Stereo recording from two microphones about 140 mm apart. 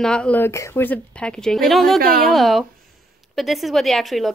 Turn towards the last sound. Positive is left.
turn(degrees=0)  # may be behind; listen again after turning